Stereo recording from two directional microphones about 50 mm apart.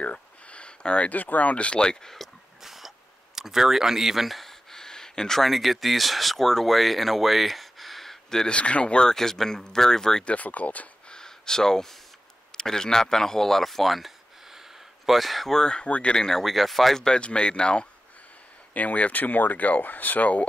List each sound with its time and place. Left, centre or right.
0.0 s a sound: left
1.1 s speech: left; by 2.1 s centre
2.6 s a sound: centre
3.3 s speech: centre
8.5 s speech: left
10.2 s speech: left
11.1 s a sound: centre
12.5 s speech: centre
15.5 s speech: centre
16.2 s speech: centre
17.0 s speech: centre
18.7 s speech: left